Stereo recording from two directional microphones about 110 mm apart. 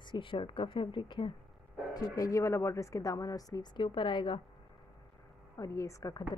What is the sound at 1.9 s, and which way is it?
Speech, 30° left (ahead or behind).